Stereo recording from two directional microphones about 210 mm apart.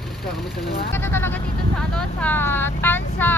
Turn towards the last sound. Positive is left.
turn(degrees=10)  # may be behind; listen again after turning